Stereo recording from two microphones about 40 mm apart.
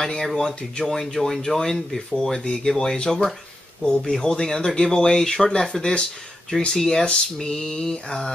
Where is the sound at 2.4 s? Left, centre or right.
Centre.